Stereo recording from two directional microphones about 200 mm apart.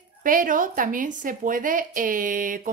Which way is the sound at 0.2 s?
45° right (ahead or behind).